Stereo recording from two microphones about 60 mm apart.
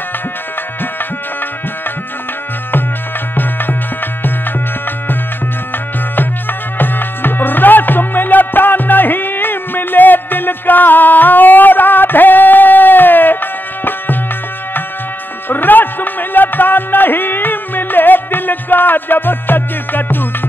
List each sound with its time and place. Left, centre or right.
6.8 s music: left
15.4 s music: left